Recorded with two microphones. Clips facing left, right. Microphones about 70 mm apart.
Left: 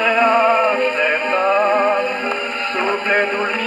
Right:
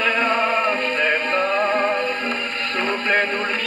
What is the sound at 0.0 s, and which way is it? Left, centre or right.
Music, centre.